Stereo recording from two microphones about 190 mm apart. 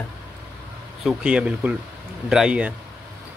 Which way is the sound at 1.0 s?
5° right (ahead or behind).